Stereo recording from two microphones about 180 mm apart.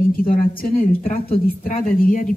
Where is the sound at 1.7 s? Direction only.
50° left (ahead or behind).